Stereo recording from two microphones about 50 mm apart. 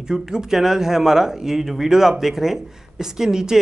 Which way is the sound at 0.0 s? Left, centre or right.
Centre.